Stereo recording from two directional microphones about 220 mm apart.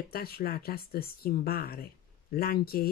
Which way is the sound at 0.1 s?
45° left (ahead or behind).